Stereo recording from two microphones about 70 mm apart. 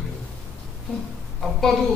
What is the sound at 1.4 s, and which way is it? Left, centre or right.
Speech, centre.